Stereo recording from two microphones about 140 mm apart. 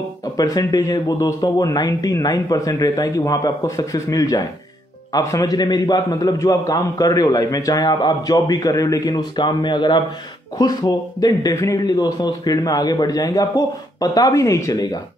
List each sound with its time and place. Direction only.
0.2 s a man's voice: 25° left (ahead or behind)